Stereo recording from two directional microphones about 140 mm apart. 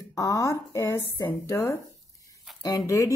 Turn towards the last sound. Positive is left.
turn(degrees=25)  # may be behind; listen again after turning